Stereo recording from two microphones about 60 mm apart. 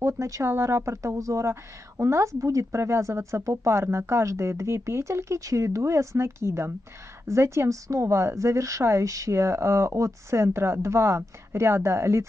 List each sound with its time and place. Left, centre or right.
0.0 s speech: right